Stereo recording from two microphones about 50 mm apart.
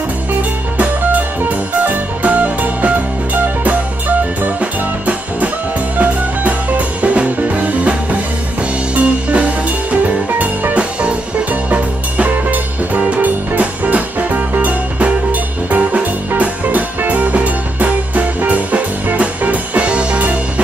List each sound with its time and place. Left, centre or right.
1.8 s music: right
4.6 s music: right
7.0 s music: right